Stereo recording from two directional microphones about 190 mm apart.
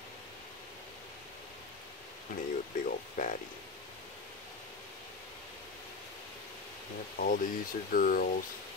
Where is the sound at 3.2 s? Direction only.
45° left (ahead or behind).